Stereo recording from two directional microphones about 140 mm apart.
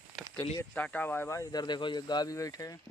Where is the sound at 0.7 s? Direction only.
10° left (ahead or behind).